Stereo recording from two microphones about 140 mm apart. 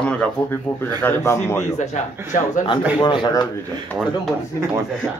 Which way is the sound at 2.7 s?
35° left (ahead or behind).